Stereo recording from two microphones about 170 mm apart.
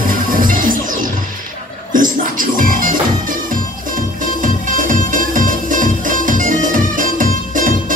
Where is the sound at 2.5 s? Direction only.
55° right (ahead or behind).